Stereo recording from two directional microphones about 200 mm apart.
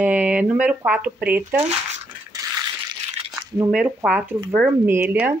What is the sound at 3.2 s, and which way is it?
Squish, 30° right (ahead or behind).